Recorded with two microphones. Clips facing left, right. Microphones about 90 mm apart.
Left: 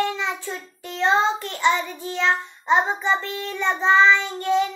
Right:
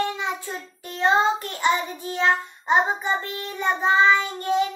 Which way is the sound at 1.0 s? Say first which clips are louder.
Even; 45° right (ahead or behind).